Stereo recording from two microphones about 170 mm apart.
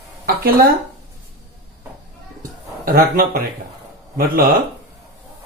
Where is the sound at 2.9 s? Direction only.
60° right (ahead or behind).